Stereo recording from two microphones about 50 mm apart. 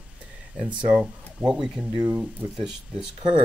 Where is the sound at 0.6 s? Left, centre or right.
Right.